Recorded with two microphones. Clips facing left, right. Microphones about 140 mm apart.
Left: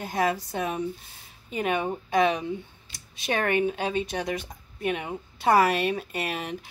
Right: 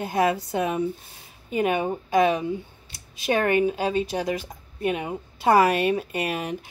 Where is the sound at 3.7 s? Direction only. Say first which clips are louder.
Right 3 dB; 40° right (ahead or behind).